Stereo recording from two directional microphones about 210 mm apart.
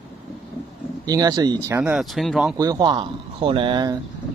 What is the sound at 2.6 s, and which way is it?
Speech, 20° right (ahead or behind).